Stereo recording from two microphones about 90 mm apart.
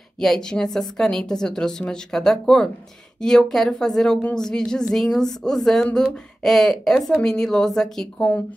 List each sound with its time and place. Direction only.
0.2 s a woman's voice: 5° left (ahead or behind)